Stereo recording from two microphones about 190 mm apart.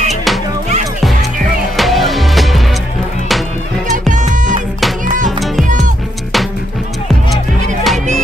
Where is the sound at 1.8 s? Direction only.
Centre (ahead or behind).